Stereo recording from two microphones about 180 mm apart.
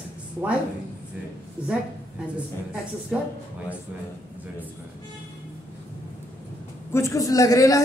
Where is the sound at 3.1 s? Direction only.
5° right (ahead or behind).